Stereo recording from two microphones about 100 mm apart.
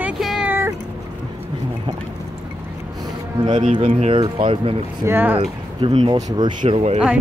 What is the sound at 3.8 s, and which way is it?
Speech, 70° right (ahead or behind).